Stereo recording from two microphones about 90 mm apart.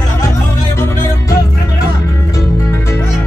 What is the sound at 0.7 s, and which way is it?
Music, 30° left (ahead or behind).